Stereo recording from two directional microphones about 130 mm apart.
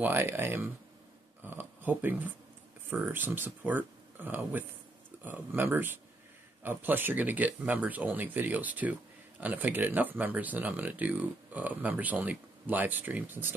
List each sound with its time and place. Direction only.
0.0 s speech: 15° right (ahead or behind)